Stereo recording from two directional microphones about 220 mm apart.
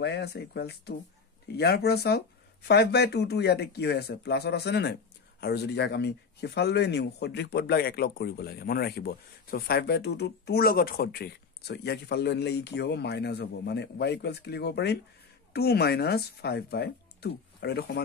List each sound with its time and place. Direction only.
0.0 s speech: 50° left (ahead or behind)